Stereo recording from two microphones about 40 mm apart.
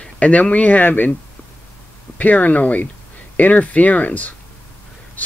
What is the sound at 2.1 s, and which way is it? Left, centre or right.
Speech, left.